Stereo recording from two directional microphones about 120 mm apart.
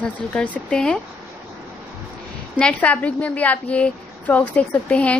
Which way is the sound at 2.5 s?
10° left (ahead or behind).